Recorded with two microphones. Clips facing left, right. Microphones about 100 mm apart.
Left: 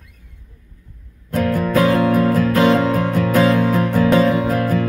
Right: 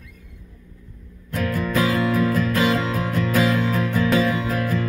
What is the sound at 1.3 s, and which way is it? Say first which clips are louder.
Music: left 6 dB; 50° left (ahead or behind).